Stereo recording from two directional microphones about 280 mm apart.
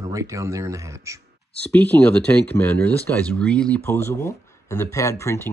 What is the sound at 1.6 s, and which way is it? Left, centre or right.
Speech, centre.